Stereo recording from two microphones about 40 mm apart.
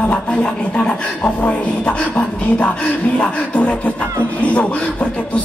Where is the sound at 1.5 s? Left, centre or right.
Left.